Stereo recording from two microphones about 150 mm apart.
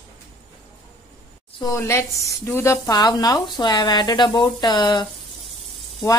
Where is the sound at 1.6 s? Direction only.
20° left (ahead or behind).